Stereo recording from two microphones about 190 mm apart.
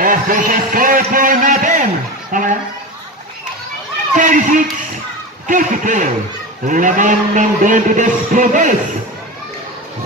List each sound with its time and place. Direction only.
0.0 s a man's voice: 45° right (ahead or behind)
2.3 s a sound: 40° right (ahead or behind)
4.1 s run: 40° right (ahead or behind)
5.5 s speech: 40° right (ahead or behind)
6.7 s music: 45° right (ahead or behind)